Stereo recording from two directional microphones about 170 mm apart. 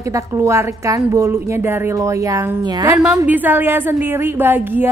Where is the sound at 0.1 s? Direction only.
15° right (ahead or behind).